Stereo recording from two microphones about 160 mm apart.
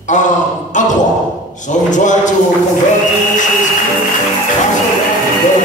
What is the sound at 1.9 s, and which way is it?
Speech, 50° left (ahead or behind).